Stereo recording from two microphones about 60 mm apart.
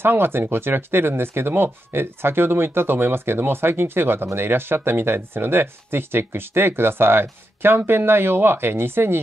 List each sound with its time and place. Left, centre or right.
0.0 s speech: right